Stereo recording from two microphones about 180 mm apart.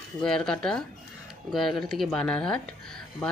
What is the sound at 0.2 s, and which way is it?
Speech, 5° left (ahead or behind).